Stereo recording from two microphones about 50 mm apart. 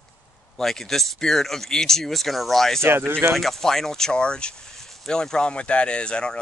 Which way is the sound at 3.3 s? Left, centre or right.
Centre.